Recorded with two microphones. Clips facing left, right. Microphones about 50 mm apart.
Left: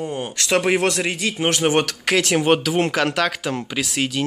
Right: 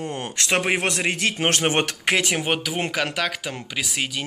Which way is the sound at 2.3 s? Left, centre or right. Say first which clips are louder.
Left 7 dB; centre.